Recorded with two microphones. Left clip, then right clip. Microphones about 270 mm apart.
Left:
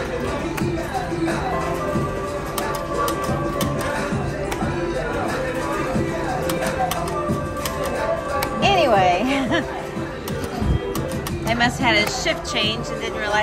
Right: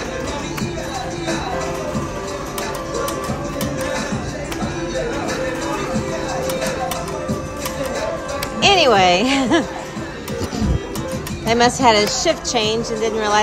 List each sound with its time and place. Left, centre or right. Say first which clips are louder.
8.5 s music: right 5 dB; right
9.0 s a sound: right 3 dB; right
11.4 s speech: right 6 dB; right